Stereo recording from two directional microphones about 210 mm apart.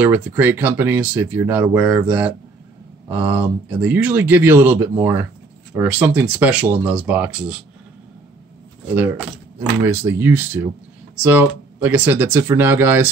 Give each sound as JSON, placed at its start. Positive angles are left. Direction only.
{"t": 0.0, "sound": "speech", "side_deg": -10}
{"t": 9.6, "sound": "speech", "side_deg": -10}